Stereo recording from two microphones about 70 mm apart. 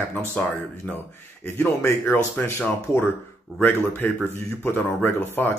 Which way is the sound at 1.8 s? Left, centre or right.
Left.